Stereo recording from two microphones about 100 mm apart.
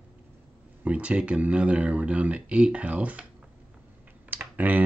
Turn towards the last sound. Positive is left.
turn(degrees=-15)  # may be behind; listen again after turning